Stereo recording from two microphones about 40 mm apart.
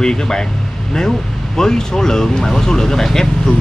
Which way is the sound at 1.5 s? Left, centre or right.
Centre.